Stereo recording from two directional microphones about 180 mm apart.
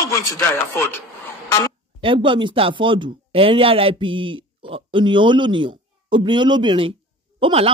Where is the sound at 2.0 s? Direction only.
30° right (ahead or behind).